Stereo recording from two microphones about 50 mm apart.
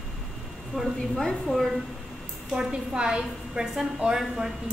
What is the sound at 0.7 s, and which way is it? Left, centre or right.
Speech, centre.